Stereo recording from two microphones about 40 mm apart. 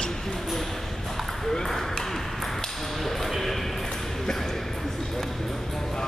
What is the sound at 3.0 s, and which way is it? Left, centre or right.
Speech, centre.